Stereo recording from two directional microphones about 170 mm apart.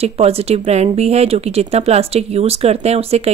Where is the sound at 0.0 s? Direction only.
35° right (ahead or behind).